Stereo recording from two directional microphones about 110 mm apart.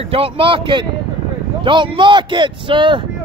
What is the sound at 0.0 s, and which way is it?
Speech, 60° right (ahead or behind).